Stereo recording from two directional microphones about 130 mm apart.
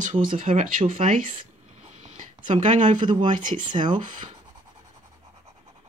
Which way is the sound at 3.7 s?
40° right (ahead or behind).